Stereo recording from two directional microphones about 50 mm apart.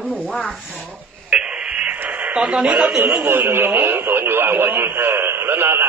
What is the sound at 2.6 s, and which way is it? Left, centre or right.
Speech, right.